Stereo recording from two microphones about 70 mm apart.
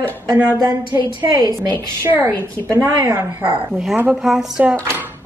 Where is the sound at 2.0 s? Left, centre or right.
Right.